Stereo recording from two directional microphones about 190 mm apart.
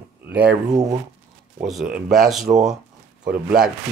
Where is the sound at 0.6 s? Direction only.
20° right (ahead or behind).